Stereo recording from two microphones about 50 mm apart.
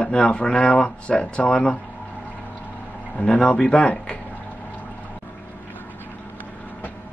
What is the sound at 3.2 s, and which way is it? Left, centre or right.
Speech, left.